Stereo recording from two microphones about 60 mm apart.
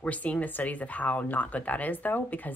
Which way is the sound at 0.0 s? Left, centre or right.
Left.